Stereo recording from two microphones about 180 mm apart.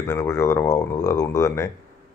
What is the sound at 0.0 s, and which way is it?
Speech, 15° left (ahead or behind).